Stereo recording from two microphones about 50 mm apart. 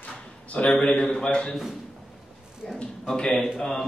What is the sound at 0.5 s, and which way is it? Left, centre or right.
Speech, left.